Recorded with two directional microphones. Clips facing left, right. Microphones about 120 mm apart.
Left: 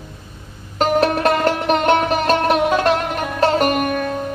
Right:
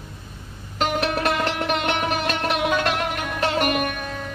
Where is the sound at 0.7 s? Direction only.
40° left (ahead or behind).